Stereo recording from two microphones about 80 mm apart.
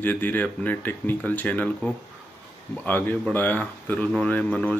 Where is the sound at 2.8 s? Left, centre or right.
Left.